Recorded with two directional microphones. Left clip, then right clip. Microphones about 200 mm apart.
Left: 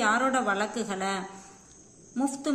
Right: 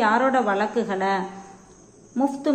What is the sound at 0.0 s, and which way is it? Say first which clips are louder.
A woman's voice: right 5 dB; 15° left (ahead or behind).